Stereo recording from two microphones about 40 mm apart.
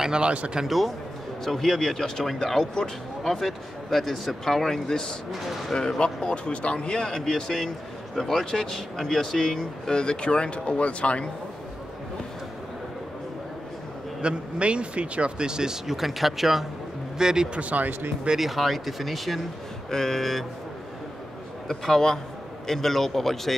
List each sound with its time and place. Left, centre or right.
0.0 s speech: right
0.7 s speech: centre
3.3 s speech: centre; by 11.2 s left
14.2 s speech: right; by 16.6 s centre
17.2 s speech: centre
17.6 s speech: right
18.4 s speech: centre
19.9 s speech: centre
21.6 s speech: centre